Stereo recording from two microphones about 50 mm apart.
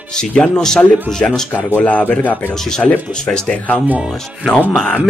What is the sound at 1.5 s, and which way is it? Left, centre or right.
Speech, left.